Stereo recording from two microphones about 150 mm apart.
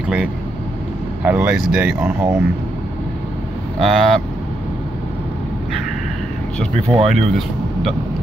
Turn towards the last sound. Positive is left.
turn(degrees=0)  # may be behind; listen again after turning